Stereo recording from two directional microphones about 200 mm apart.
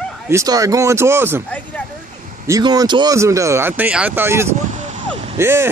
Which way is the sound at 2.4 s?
20° right (ahead or behind).